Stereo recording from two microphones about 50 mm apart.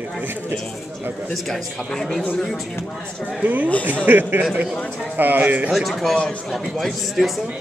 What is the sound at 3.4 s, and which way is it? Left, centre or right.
Speech, right.